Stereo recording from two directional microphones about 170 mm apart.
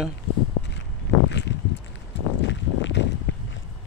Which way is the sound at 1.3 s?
90° left.